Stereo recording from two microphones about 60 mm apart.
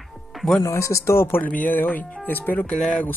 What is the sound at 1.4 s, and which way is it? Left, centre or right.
Speech, left.